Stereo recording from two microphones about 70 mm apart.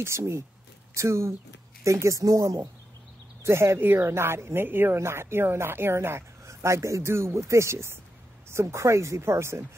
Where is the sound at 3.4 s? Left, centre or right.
Right.